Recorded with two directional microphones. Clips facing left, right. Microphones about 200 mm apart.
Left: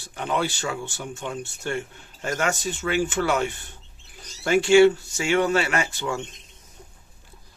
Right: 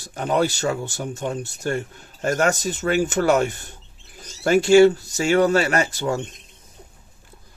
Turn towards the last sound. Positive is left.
turn(degrees=-40)  # may be behind; listen again after turning